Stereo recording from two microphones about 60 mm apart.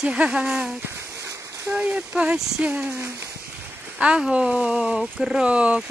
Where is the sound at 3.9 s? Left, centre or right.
Centre.